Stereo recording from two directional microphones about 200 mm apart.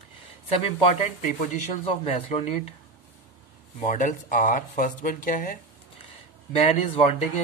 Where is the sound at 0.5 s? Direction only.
30° left (ahead or behind).